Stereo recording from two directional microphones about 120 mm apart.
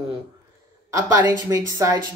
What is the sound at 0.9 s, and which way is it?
A woman's voice, 25° right (ahead or behind).